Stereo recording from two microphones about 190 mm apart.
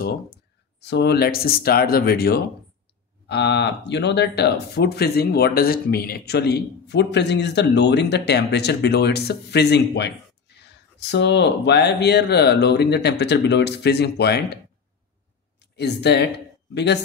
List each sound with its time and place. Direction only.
0.7 s speech: 60° left (ahead or behind)
15.6 s speech: 60° left (ahead or behind)